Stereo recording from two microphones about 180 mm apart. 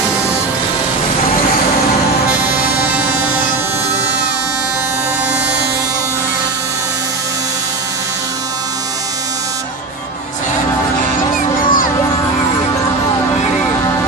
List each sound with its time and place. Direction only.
2.4 s music: 10° right (ahead or behind)
11.6 s crowd: 50° left (ahead or behind)